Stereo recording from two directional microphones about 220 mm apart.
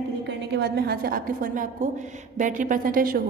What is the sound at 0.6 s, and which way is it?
A woman's voice, 45° right (ahead or behind).